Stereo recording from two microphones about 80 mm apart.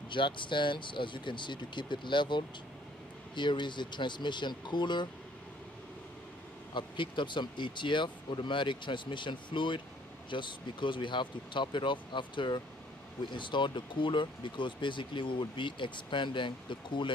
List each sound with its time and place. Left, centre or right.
0.1 s speech: left
6.7 s speech: left